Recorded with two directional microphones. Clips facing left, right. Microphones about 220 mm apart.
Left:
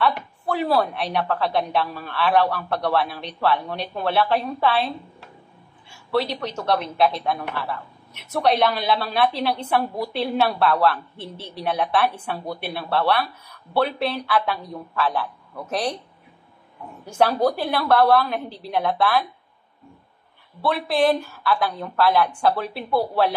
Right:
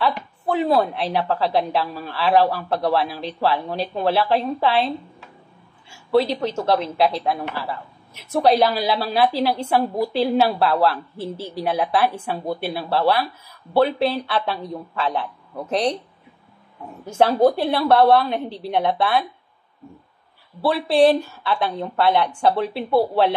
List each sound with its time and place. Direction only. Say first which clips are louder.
0.5 s a woman's voice: right 3 dB; 20° right (ahead or behind)
6.1 s a woman's voice: right 5 dB; 25° right (ahead or behind)
17.1 s a woman's voice: right 3 dB; 25° right (ahead or behind)
20.6 s a woman's voice: right 4 dB; 30° right (ahead or behind)